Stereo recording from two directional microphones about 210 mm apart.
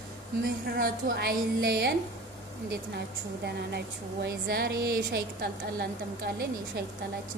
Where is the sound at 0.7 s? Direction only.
45° right (ahead or behind).